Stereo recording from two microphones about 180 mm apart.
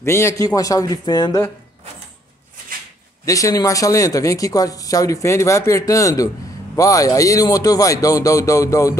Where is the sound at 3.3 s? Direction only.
20° left (ahead or behind).